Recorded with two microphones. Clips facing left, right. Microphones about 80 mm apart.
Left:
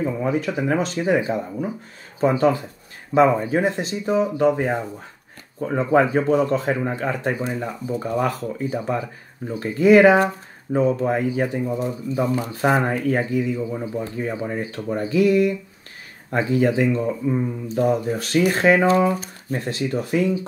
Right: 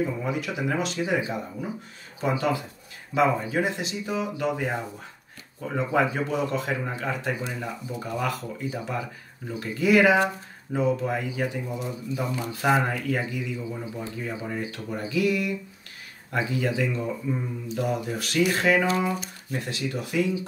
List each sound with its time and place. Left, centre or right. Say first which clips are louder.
0.0 s speech: left 5 dB; left